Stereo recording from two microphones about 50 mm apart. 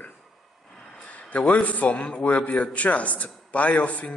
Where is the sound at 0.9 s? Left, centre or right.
Left.